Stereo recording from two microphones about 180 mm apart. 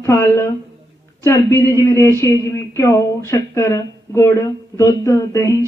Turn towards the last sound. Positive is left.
turn(degrees=15)  # may be behind; listen again after turning